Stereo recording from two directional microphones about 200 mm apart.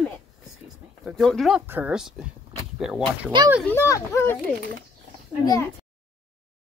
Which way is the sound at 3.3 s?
25° right (ahead or behind).